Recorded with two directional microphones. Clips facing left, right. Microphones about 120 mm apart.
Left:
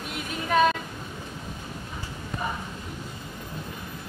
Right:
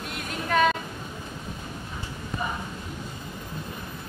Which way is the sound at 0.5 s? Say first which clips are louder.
Left 1 dB; 5° left (ahead or behind).